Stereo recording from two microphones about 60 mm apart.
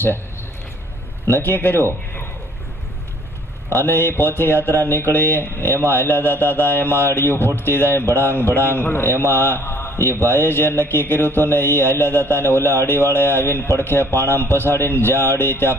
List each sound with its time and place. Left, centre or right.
1.2 s speech: left
3.7 s speech: left